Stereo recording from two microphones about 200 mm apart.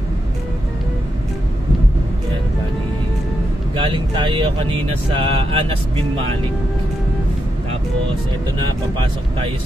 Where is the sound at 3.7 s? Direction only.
25° right (ahead or behind).